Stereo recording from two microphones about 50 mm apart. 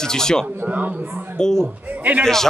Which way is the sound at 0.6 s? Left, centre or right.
Right.